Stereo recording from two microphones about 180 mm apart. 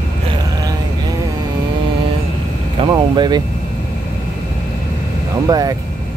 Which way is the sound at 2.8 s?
25° right (ahead or behind).